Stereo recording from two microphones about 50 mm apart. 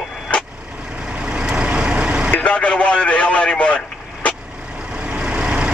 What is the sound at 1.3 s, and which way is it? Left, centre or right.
Vehicle, centre.